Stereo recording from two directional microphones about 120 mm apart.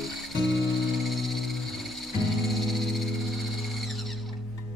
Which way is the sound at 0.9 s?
Centre (ahead or behind).